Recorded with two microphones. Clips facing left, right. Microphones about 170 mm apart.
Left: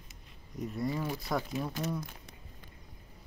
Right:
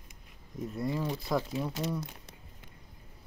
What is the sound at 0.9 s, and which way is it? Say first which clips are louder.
Speech: right 2 dB; centre (ahead or behind).